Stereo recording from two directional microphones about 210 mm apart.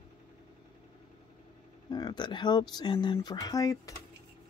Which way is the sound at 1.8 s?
20° left (ahead or behind).